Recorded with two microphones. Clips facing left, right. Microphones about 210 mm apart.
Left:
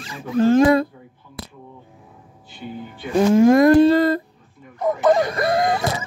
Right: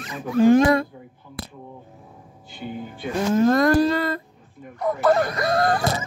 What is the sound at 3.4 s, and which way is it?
Speech, 15° left (ahead or behind).